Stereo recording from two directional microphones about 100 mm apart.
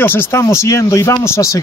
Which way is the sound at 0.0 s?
20° left (ahead or behind).